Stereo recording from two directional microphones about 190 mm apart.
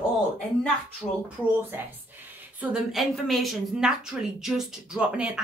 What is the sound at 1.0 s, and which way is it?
Speech, 15° left (ahead or behind).